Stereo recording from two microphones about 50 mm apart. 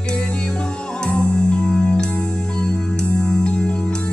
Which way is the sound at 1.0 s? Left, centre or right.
Left.